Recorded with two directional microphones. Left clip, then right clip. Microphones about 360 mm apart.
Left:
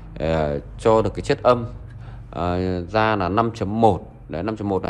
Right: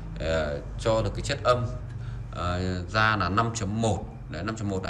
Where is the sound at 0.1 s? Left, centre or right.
Centre.